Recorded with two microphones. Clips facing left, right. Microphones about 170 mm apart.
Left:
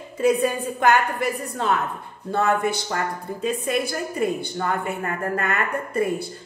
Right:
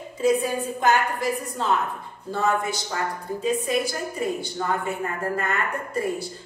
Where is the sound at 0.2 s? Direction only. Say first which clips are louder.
Left 2 dB; 60° left (ahead or behind).